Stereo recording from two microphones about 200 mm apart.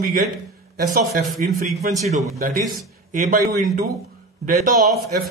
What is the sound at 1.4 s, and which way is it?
Speech, 45° right (ahead or behind).